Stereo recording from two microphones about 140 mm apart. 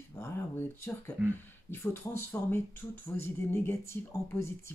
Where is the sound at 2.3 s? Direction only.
10° left (ahead or behind).